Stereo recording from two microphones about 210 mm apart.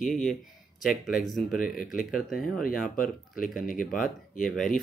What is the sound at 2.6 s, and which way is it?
Speech, 40° left (ahead or behind).